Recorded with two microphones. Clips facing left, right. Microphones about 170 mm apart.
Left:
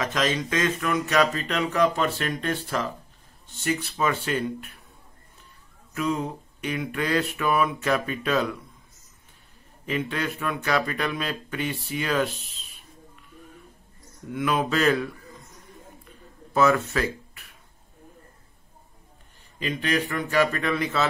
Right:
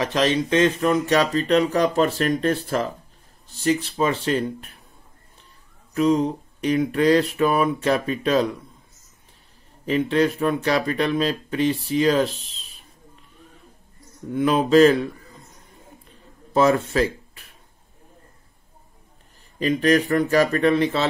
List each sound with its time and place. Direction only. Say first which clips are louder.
0.0 s speech: right 5 dB; 30° right (ahead or behind)
5.9 s speech: right 8 dB; 30° right (ahead or behind)
9.8 s speech: right 8 dB; 35° right (ahead or behind)
14.3 s speech: right 8 dB; 30° right (ahead or behind)
16.5 s speech: right 3 dB; 30° right (ahead or behind)
19.6 s speech: right 8 dB; 40° right (ahead or behind)